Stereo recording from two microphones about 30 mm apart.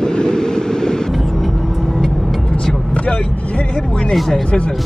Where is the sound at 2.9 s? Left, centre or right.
Left.